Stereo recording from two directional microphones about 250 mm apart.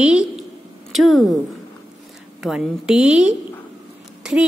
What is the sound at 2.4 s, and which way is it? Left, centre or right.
A woman's voice, centre.